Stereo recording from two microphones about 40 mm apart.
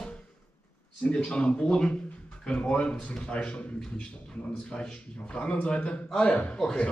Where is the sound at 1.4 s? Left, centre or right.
Left.